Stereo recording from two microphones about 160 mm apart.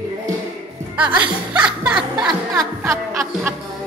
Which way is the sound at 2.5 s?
20° right (ahead or behind).